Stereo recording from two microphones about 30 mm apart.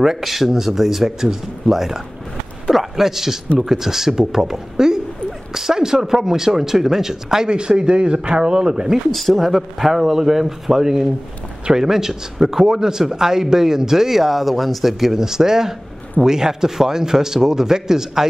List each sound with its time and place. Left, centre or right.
0.2 s a man's voice: centre
7.4 s speech: right
9.1 s speech: centre
15.1 s speech: centre